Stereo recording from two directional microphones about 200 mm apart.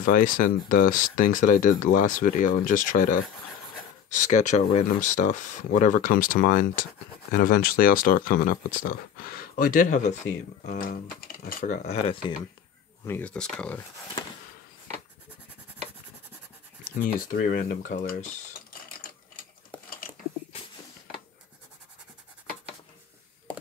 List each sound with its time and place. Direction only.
0.0 s speech: 45° left (ahead or behind)
13.0 s speech: 10° left (ahead or behind)
16.8 s speech: 40° left (ahead or behind)
19.0 s a sound: 50° left (ahead or behind)